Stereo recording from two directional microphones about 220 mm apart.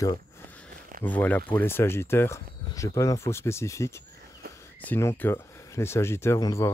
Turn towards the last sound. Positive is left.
turn(degrees=15)  # may be behind; listen again after turning